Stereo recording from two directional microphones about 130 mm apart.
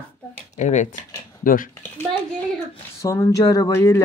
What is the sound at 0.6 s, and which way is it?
Speech, 65° left (ahead or behind).